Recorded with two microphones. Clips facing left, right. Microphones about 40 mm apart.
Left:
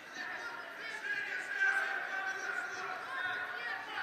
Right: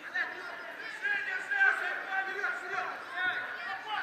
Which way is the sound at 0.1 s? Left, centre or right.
Right.